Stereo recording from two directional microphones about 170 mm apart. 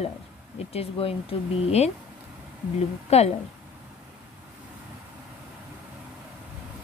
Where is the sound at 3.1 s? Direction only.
40° left (ahead or behind).